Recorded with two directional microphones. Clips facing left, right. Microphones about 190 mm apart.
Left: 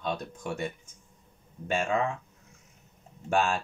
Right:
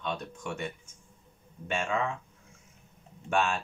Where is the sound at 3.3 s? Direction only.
35° left (ahead or behind).